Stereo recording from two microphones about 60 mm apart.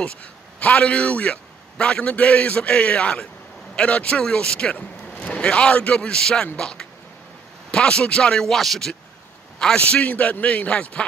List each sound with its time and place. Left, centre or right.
0.0 s a man's voice: left; by 8.9 s centre
9.6 s a man's voice: centre